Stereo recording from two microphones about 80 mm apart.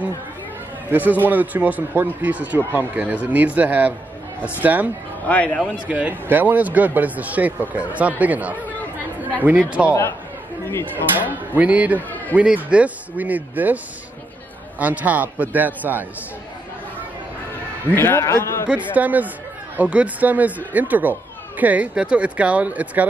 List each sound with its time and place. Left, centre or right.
1.2 s speech: right
5.3 s a man's voice: centre
5.9 s speech: centre
9.8 s speech: left
11.2 s speech: centre
14.8 s speech: centre
17.9 s a man's voice: left
18.9 s speech: right